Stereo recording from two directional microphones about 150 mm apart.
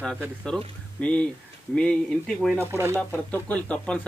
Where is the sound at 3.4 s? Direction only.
10° left (ahead or behind).